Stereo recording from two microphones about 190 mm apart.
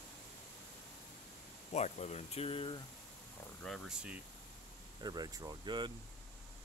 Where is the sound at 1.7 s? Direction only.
35° left (ahead or behind).